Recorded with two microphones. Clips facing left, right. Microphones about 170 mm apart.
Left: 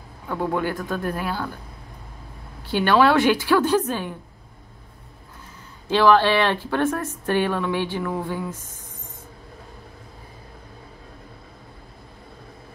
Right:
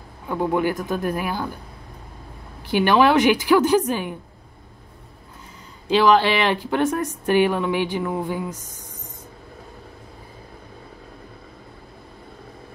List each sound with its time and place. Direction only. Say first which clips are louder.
0.3 s speech: right 3 dB; 15° right (ahead or behind)
2.7 s speech: right 1 dB; 15° right (ahead or behind)
5.9 s speech: even; 15° right (ahead or behind)